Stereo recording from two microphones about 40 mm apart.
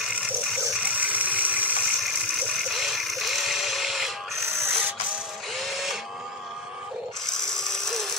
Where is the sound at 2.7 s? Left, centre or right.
Centre.